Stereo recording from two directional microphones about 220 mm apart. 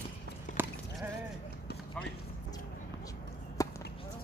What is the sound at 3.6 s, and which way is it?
Chop, 15° left (ahead or behind).